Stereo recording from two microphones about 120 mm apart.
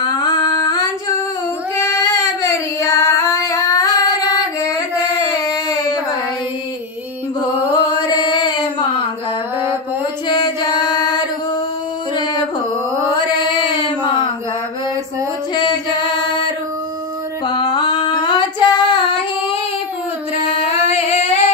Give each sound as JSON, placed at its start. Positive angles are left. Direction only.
{"t": 0.2, "sound": "a sound", "side_deg": 30}
{"t": 1.8, "sound": "child singing", "side_deg": 25}
{"t": 5.3, "sound": "a sound", "side_deg": 30}
{"t": 7.7, "sound": "chant", "side_deg": 35}
{"t": 10.2, "sound": "singing", "side_deg": 40}
{"t": 13.1, "sound": "mantra", "side_deg": 40}
{"t": 15.5, "sound": "a sound", "side_deg": 40}
{"t": 17.5, "sound": "female singing", "side_deg": 40}
{"t": 20.4, "sound": "singing", "side_deg": 60}